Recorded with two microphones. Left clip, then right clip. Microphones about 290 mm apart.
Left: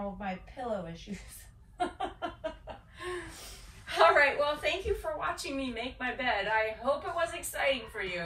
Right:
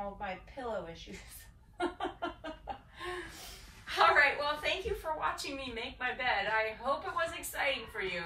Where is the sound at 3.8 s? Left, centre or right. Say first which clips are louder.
Left 3 dB; centre.